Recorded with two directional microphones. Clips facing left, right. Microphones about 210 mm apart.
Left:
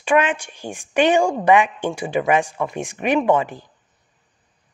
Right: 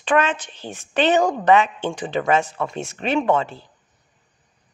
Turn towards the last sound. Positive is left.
turn(degrees=15)  # may be behind; listen again after turning